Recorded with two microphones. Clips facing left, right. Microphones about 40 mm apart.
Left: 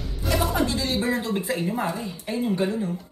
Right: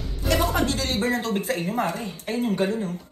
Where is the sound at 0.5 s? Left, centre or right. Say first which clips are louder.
Even; right.